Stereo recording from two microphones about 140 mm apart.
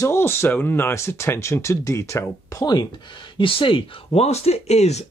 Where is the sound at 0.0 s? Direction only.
15° left (ahead or behind).